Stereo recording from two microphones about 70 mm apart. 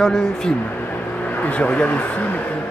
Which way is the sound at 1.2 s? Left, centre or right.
Left.